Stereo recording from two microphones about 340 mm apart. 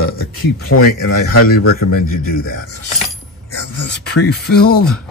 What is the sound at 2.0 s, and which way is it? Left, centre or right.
Speech, left.